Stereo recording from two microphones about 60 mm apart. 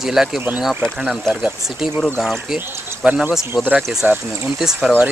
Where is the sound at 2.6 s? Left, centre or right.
Right.